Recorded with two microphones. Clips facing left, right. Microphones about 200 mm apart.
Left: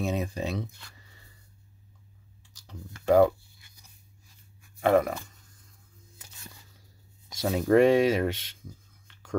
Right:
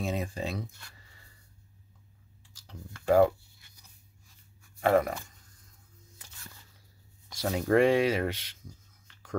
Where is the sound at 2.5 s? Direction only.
20° left (ahead or behind).